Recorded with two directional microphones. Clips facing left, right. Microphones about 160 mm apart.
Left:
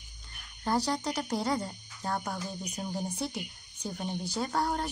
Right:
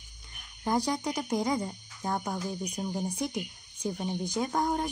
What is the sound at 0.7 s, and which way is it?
Speech, 15° right (ahead or behind).